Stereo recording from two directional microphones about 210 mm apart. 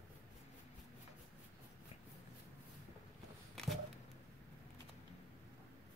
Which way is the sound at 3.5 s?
Centre (ahead or behind).